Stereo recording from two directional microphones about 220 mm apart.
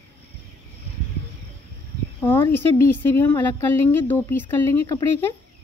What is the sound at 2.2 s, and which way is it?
Speech, 10° left (ahead or behind).